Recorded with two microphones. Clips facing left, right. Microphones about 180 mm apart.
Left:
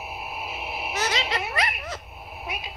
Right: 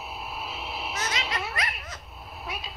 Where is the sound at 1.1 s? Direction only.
30° left (ahead or behind).